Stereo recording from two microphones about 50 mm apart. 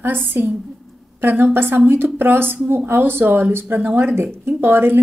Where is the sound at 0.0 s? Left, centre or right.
Right.